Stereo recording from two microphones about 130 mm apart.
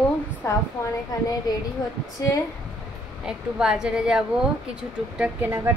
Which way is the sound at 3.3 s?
5° right (ahead or behind).